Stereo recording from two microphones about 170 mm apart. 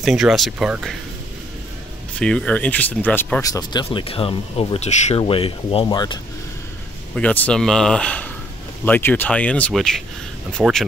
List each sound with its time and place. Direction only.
0.0 s speech: centre (ahead or behind)
2.1 s speech: 5° left (ahead or behind); by 6.1 s 25° left (ahead or behind)
7.2 s speech: 5° left (ahead or behind)